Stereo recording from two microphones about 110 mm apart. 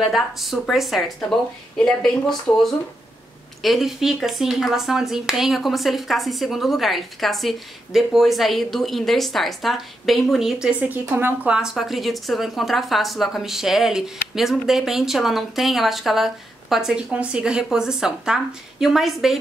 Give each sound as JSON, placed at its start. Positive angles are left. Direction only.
{"t": 0.0, "sound": "speech", "side_deg": 0}
{"t": 11.1, "sound": "speech", "side_deg": -20}
{"t": 11.5, "sound": "speech", "side_deg": -5}